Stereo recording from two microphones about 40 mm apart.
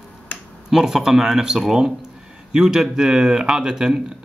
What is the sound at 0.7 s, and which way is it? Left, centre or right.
Speech, centre.